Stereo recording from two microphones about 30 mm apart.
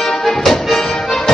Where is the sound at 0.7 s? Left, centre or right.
Left.